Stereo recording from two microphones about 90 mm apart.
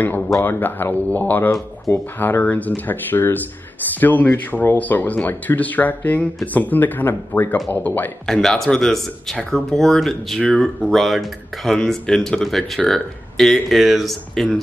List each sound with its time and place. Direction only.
0.0 s speech: 20° left (ahead or behind)
8.3 s speech: 5° left (ahead or behind)